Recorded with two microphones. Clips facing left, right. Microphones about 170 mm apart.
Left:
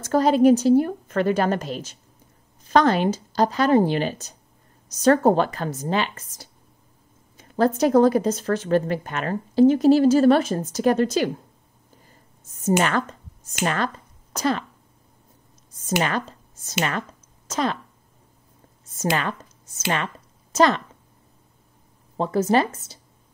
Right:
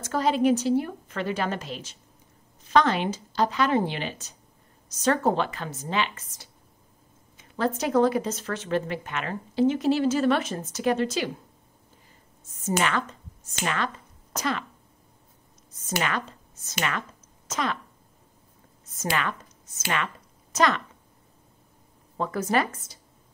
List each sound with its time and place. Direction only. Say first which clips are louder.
0.0 s a woman's voice: left 6 dB; 40° left (ahead or behind)
12.6 s a woman's voice: left 5 dB; 40° left (ahead or behind)
16.0 s speech: left 3 dB; 35° left (ahead or behind)
18.9 s speech: left 4 dB; 30° left (ahead or behind)
20.5 s a woman's voice: left 5 dB; 30° left (ahead or behind)
22.1 s speech: left 5 dB; 30° left (ahead or behind)